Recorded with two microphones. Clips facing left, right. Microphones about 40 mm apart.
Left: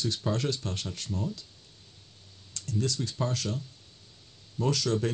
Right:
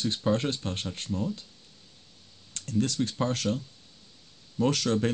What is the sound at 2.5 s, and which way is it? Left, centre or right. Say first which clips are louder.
Speech: right 3 dB; right.